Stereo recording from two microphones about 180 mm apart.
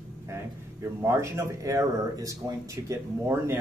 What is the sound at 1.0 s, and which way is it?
Speech, 15° right (ahead or behind).